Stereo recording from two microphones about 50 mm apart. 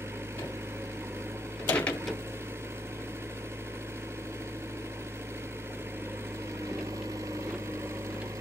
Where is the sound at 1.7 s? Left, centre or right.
Left.